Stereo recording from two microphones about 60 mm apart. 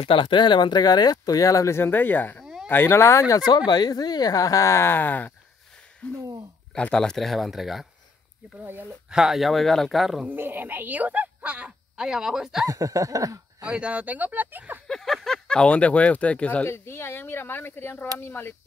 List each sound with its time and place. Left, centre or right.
0.8 s speech: left
1.7 s speech: left
2.4 s a sound: centre
2.7 s speech: left
3.0 s speech: left
4.8 s speech: left; by 7.2 s centre
7.2 s speech: centre
9.1 s speech: centre
10.3 s speech: right; by 12.6 s centre
12.6 s snicker: right
13.7 s speech: centre
14.9 s a sound: centre
15.2 s speech: centre
16.6 s speech: left